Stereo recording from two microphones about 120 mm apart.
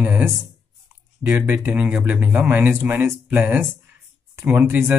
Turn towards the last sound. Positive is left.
turn(degrees=-15)  # may be behind; listen again after turning